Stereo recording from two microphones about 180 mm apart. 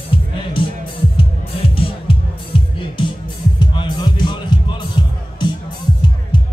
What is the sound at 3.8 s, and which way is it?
Music, 25° left (ahead or behind).